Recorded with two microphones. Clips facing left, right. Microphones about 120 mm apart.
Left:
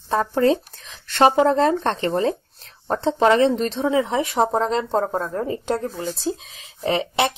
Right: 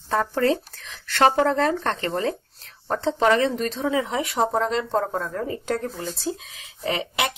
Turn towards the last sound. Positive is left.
turn(degrees=30)  # may be behind; listen again after turning